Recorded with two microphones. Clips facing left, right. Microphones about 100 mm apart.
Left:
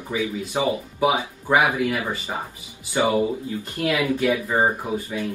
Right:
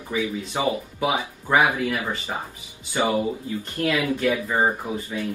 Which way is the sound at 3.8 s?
15° left (ahead or behind).